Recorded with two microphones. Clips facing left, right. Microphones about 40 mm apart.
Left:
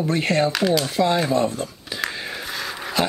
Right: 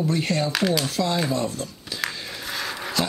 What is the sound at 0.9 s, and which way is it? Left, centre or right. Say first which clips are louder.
Speech: left 4 dB; centre.